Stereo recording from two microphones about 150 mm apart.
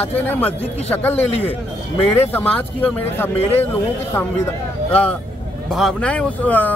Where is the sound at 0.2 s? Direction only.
10° left (ahead or behind).